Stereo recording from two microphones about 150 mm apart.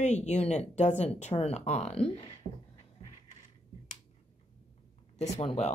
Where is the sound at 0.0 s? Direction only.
50° left (ahead or behind).